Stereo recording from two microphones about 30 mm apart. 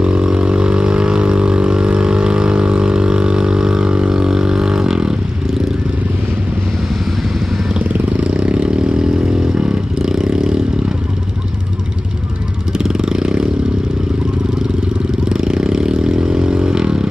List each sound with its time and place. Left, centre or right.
0.0 s vehicle: right
7.8 s vehicle: right
8.2 s vehicle: right
8.9 s vehicle: right
12.7 s vehicle: right
15.2 s vehicle: right